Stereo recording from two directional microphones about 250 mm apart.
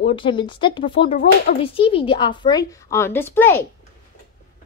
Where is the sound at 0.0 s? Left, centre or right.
Centre.